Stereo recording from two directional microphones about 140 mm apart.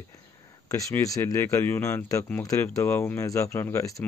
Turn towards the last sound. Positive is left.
turn(degrees=20)  # may be behind; listen again after turning